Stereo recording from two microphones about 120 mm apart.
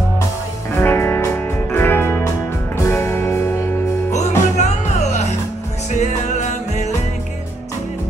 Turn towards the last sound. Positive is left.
turn(degrees=80)